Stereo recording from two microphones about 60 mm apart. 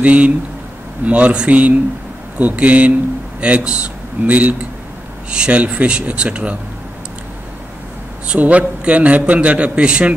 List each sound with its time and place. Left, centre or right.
0.0 s a man's voice: right
8.3 s a man's voice: right